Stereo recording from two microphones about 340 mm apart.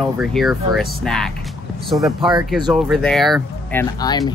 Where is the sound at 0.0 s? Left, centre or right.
Centre.